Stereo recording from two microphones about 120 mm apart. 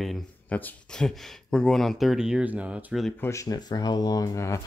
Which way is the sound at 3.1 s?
25° left (ahead or behind).